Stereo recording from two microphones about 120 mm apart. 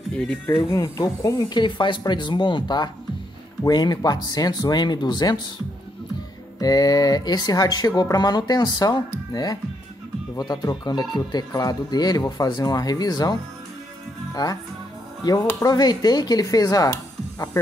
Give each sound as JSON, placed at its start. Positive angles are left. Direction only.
{"t": 0.1, "sound": "speech", "side_deg": 10}
{"t": 0.7, "sound": "speech", "side_deg": 30}
{"t": 6.6, "sound": "speech", "side_deg": 30}
{"t": 15.6, "sound": "speech", "side_deg": 35}